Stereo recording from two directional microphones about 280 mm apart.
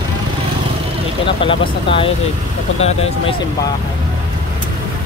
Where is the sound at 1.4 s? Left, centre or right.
Centre.